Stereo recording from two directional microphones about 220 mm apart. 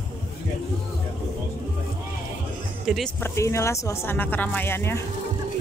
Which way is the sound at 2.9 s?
Centre (ahead or behind).